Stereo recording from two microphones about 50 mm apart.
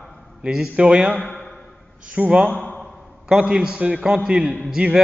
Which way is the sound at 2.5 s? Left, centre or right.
Left.